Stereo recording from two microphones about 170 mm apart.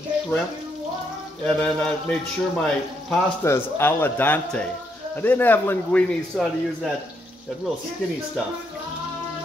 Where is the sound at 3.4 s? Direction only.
15° left (ahead or behind).